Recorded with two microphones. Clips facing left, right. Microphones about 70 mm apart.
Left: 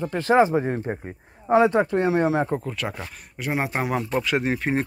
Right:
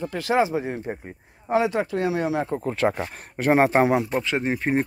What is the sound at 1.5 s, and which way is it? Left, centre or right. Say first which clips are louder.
Speech: left 4 dB; left.